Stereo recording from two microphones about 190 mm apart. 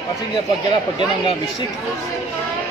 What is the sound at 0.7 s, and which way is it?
Speech, 25° left (ahead or behind).